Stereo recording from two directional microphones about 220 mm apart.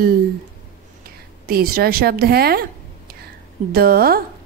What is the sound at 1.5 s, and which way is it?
A woman's voice, 40° right (ahead or behind).